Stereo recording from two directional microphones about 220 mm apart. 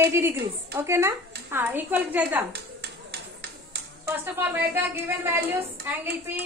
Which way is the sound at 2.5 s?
50° right (ahead or behind).